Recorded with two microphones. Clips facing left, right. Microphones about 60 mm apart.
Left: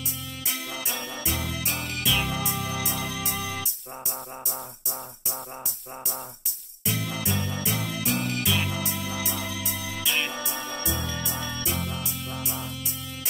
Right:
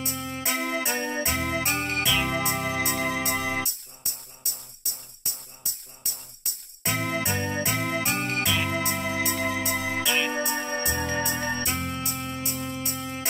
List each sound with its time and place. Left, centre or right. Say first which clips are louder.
0.0 s music: right 5 dB; right
6.0 s jingle bell: left 8 dB; right
8.6 s music: right 4 dB; right
10.0 s music: even; centre
10.4 s music: right 5 dB; right